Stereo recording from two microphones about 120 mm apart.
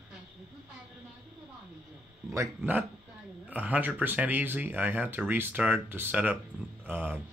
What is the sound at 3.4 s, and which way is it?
Speech, 15° right (ahead or behind).